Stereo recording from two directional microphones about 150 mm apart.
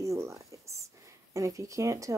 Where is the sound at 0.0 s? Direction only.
20° right (ahead or behind).